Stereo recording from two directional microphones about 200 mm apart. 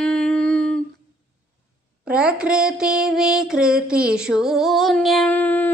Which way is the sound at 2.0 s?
5° right (ahead or behind).